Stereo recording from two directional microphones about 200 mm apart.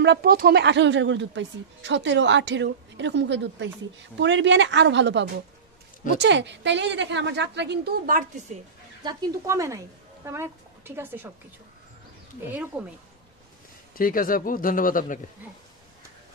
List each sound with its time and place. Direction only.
0.0 s a woman's voice: 55° right (ahead or behind)
9.0 s a woman's voice: 15° right (ahead or behind)
12.7 s speech: 5° right (ahead or behind)
13.9 s speech: 45° left (ahead or behind)